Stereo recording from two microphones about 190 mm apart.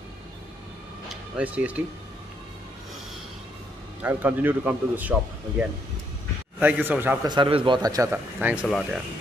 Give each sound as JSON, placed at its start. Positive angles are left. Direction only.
{"t": 1.0, "sound": "a sound", "side_deg": -5}
{"t": 4.0, "sound": "a man's voice", "side_deg": -10}
{"t": 6.6, "sound": "a man's voice", "side_deg": -10}
{"t": 7.2, "sound": "speech", "side_deg": -25}